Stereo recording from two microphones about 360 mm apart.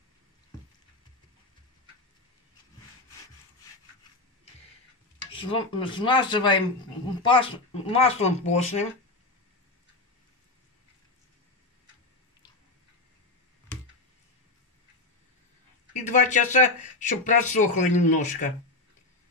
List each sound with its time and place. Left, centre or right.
5.3 s speech: centre
16.1 s speech: left